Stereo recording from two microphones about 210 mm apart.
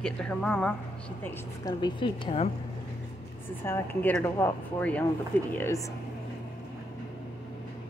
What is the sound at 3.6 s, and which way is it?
Speech, 10° left (ahead or behind).